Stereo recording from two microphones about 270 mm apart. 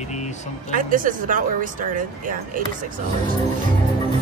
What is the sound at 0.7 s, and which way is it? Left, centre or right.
Speech, right.